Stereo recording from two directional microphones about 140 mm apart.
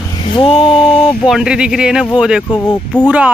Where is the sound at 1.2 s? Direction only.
5° right (ahead or behind).